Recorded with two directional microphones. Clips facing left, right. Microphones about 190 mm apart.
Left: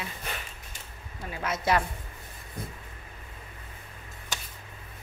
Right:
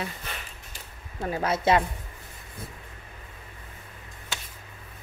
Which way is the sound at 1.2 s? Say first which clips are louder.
Right 5 dB; 35° right (ahead or behind).